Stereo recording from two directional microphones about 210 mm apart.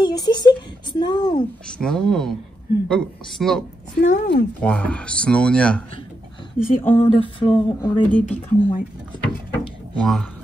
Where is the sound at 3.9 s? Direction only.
50° left (ahead or behind).